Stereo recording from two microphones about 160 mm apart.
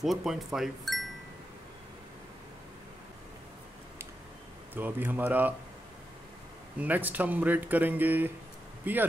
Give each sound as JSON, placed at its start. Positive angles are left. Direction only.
{"t": 0.0, "sound": "speech", "side_deg": 0}
{"t": 4.7, "sound": "speech", "side_deg": -10}
{"t": 6.8, "sound": "speech", "side_deg": -10}